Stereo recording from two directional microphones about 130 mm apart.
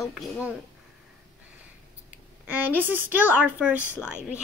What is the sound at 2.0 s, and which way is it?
A woman's voice, 10° right (ahead or behind).